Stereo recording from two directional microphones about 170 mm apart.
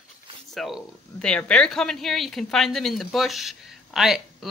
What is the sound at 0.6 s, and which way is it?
Speech, centre (ahead or behind).